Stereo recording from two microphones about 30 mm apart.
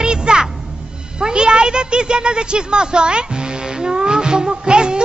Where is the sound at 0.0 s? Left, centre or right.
Right.